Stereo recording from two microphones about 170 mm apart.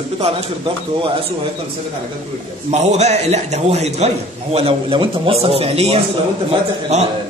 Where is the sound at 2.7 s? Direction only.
40° right (ahead or behind).